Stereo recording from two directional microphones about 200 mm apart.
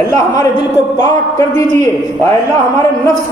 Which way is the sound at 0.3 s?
20° left (ahead or behind).